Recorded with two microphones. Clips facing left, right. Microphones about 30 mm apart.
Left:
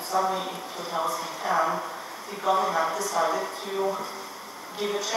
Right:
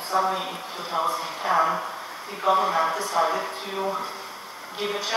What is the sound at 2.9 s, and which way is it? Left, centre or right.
Speech, right.